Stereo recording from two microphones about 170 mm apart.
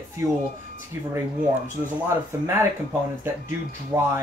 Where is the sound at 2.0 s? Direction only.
15° right (ahead or behind).